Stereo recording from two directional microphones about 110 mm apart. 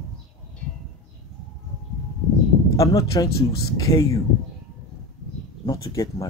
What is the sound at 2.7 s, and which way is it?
Speech, 30° left (ahead or behind).